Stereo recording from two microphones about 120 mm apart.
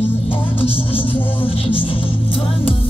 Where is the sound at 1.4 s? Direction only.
50° left (ahead or behind).